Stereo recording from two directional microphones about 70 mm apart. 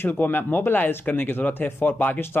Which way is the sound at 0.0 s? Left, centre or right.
Left.